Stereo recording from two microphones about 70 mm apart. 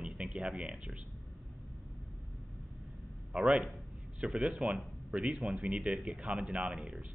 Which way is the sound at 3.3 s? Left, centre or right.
Centre.